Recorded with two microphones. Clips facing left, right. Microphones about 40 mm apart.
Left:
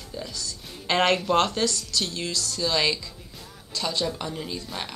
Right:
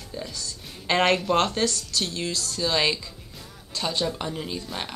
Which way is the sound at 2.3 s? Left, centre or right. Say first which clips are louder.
Even; right.